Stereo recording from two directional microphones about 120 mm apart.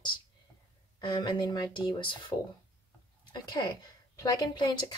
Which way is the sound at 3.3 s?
40° left (ahead or behind).